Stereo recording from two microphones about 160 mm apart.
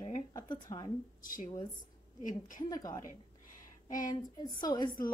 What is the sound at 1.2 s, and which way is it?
Speech, 60° left (ahead or behind).